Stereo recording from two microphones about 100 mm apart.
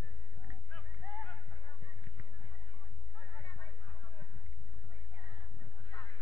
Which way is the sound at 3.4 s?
35° left (ahead or behind).